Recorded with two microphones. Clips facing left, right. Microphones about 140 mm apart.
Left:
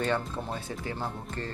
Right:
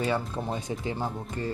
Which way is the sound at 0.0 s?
10° right (ahead or behind).